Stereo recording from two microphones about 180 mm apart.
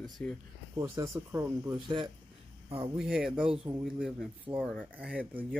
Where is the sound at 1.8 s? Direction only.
25° right (ahead or behind).